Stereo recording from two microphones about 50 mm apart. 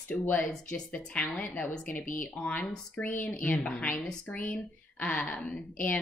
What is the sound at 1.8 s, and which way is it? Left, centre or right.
Speech, left.